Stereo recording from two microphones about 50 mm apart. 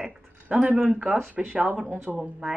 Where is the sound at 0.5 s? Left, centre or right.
Centre.